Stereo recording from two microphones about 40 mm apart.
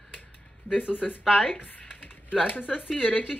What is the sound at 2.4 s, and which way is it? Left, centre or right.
Speech, left.